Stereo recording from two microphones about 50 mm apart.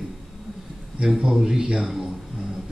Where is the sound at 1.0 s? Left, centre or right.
Centre.